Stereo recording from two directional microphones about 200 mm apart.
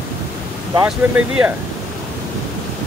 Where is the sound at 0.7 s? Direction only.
10° right (ahead or behind).